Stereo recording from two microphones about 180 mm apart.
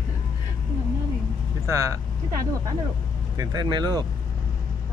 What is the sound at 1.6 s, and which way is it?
Speech, 15° right (ahead or behind).